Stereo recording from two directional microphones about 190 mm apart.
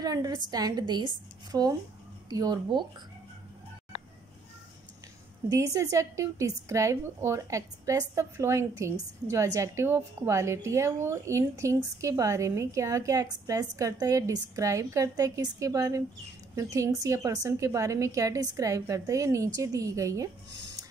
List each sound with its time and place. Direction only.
0.0 s a woman's voice: 20° right (ahead or behind)
5.5 s a woman's voice: 15° right (ahead or behind)